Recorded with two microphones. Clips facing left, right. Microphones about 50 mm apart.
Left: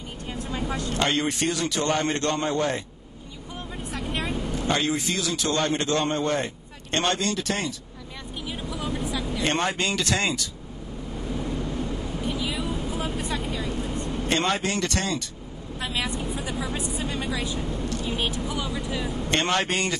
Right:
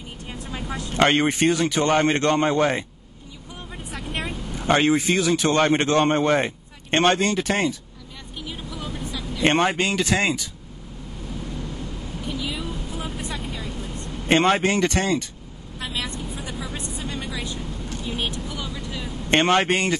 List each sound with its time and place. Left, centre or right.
0.3 s vehicle: centre
0.9 s a man's voice: right
3.9 s vehicle: centre
4.6 s a man's voice: right
8.4 s vehicle: centre
9.4 s speech: right
9.8 s speech: centre
12.3 s vehicle: centre
14.2 s speech: right
15.8 s vehicle: centre
16.6 s a woman's voice: centre
19.3 s speech: right